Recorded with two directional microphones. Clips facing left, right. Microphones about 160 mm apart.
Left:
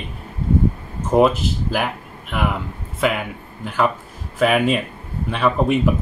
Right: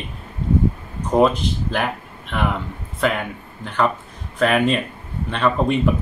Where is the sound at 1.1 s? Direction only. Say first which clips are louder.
Left 1 dB; 5° left (ahead or behind).